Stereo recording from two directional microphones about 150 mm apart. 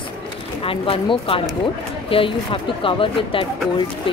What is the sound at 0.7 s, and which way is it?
Speech, 35° left (ahead or behind).